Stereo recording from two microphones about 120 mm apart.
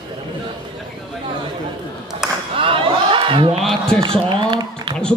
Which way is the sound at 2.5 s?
50° right (ahead or behind).